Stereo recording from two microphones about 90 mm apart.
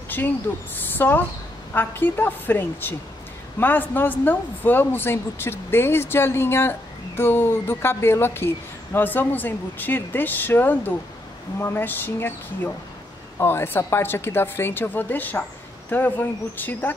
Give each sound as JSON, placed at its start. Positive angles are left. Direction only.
{"t": 0.1, "sound": "a woman's voice", "side_deg": 20}